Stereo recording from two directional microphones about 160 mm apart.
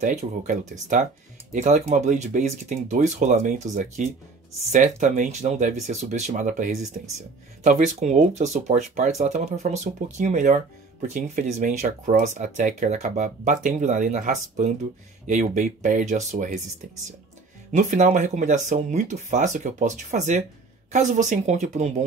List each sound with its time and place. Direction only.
0.0 s speech: 50° right (ahead or behind)
17.7 s speech: 45° right (ahead or behind)